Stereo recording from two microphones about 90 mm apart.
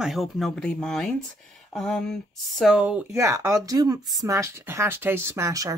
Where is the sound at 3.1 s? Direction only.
35° right (ahead or behind).